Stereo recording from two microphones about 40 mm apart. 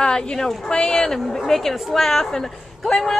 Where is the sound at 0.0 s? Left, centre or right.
Centre.